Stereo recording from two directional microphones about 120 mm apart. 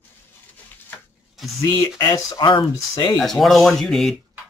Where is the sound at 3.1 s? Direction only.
Centre (ahead or behind).